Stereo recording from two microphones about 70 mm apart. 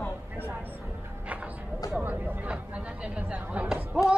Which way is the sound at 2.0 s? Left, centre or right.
Right.